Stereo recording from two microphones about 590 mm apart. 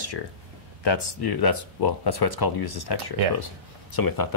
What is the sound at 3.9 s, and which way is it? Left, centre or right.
Speech, left.